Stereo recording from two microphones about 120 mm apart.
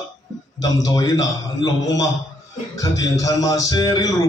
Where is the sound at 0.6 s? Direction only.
30° left (ahead or behind).